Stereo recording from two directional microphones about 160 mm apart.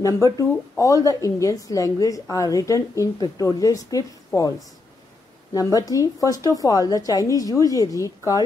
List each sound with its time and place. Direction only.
0.0 s a woman's voice: 20° left (ahead or behind)
5.5 s a woman's voice: 20° left (ahead or behind)